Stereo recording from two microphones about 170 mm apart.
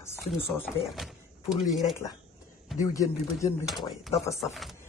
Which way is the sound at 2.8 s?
20° left (ahead or behind).